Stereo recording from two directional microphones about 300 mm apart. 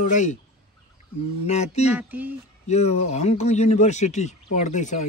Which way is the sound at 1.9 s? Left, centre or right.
Centre.